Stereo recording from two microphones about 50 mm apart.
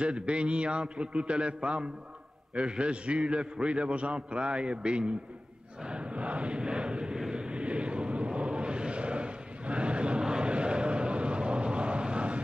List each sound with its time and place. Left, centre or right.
0.0 s a man's voice: right
6.7 s vehicle: centre